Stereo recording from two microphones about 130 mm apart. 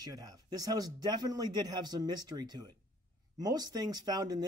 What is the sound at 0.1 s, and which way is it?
Speech, 30° right (ahead or behind).